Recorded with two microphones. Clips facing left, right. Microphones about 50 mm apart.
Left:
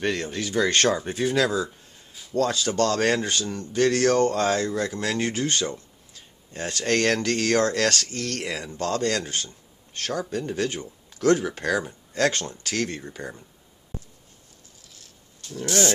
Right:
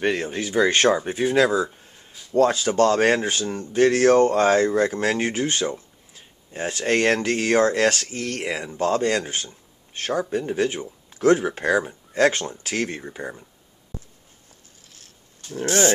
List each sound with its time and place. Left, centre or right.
0.0 s speech: centre
15.4 s speech: right